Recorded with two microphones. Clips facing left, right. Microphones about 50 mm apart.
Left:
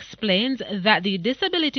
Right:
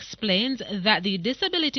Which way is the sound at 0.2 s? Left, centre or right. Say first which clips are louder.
Left 3 dB; centre.